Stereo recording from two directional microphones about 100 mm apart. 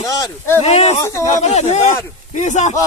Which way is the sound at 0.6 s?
90° left.